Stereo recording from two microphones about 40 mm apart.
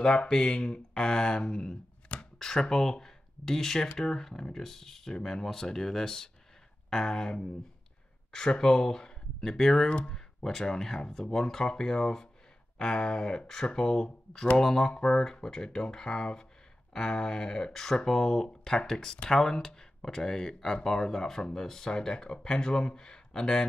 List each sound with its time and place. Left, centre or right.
0.0 s speech: centre
9.8 s speech: left
10.1 s speech: centre